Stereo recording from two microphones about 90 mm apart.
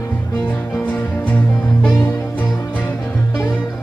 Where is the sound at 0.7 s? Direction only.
15° left (ahead or behind).